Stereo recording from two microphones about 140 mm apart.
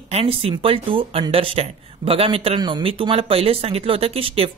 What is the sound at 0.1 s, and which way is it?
Speech, 45° right (ahead or behind).